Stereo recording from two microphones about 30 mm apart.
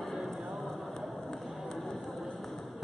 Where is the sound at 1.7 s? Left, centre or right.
Centre.